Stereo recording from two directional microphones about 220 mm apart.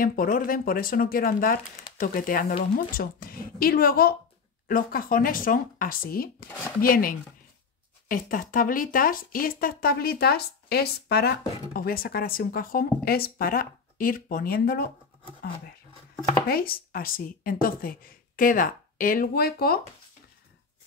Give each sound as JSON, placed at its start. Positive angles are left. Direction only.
{"t": 0.0, "sound": "speech", "side_deg": 40}
{"t": 16.4, "sound": "speech", "side_deg": 40}